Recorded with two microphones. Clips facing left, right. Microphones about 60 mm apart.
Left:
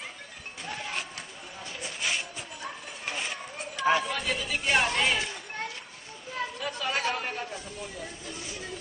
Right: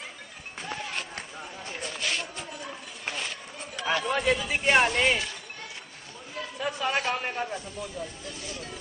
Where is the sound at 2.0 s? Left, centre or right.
Centre.